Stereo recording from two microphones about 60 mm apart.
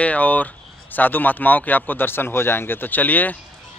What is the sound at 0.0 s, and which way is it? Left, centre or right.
A man's voice, left.